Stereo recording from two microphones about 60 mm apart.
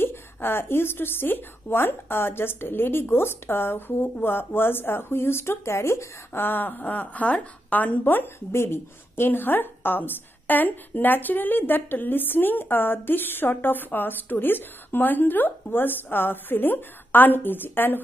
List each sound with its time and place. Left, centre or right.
0.0 s a woman's voice: left
8.5 s a woman's voice: left